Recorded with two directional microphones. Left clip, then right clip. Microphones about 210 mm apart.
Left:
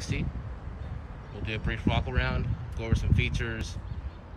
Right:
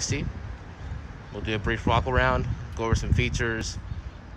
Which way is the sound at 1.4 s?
5° right (ahead or behind).